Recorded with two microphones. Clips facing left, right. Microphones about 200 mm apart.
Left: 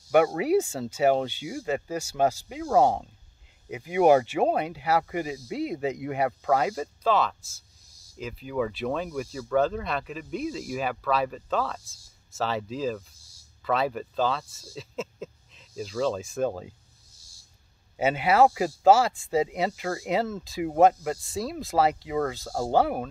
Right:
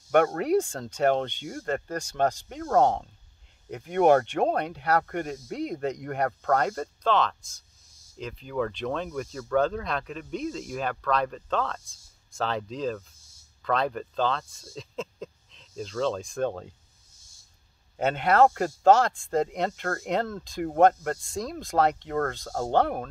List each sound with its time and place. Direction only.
0.1 s speech: 5° left (ahead or behind)
17.2 s a sound: 35° left (ahead or behind)
17.9 s speech: 5° left (ahead or behind)